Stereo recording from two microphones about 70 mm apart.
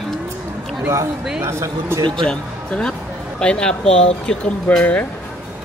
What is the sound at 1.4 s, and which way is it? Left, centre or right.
Speech, right.